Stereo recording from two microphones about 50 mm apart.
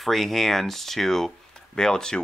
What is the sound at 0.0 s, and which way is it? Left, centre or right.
Speech, centre.